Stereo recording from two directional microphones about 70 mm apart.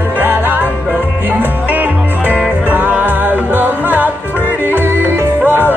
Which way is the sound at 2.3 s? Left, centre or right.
Right.